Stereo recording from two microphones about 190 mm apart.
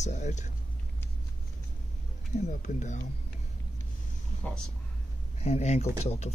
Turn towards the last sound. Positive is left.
turn(degrees=35)  # may be behind; listen again after turning